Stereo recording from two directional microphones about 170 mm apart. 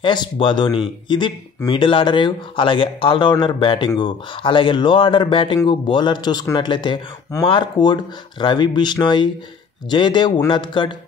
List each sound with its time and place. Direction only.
0.0 s speech: 25° left (ahead or behind)